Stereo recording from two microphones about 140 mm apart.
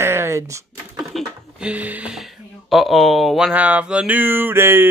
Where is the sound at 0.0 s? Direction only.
20° right (ahead or behind).